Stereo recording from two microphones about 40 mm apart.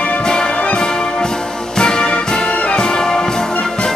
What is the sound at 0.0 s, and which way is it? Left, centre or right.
Music, centre.